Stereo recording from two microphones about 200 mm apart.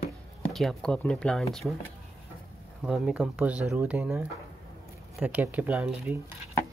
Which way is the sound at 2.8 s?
5° right (ahead or behind).